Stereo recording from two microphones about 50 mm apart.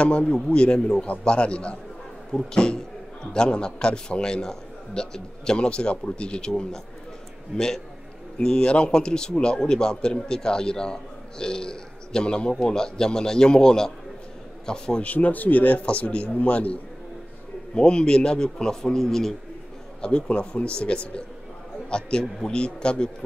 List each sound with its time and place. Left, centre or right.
0.0 s a man's voice: left
1.0 s a man's voice: left
15.0 s a man's voice: left
17.7 s a man's voice: centre
20.0 s a man's voice: left